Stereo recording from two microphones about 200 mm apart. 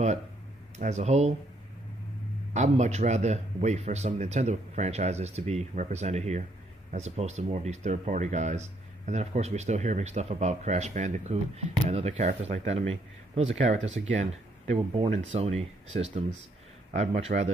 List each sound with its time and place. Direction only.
0.7 s speech: 35° right (ahead or behind)
2.5 s speech: 35° right (ahead or behind)